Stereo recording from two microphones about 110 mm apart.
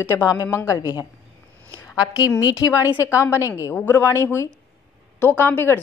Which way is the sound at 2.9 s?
15° right (ahead or behind).